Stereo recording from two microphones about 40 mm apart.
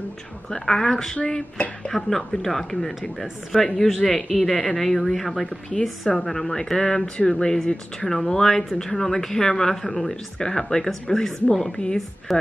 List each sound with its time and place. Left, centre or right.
0.5 s speech: centre
5.4 s a woman's voice: left
6.1 s speech: centre
12.3 s speech: centre